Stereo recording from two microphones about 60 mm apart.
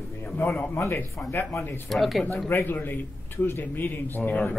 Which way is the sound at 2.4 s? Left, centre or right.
Left.